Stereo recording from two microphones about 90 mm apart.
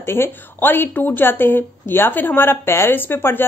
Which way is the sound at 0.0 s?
25° left (ahead or behind).